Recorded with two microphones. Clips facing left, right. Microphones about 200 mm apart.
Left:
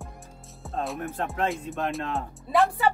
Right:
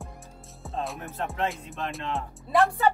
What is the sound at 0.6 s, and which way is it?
Music, centre (ahead or behind).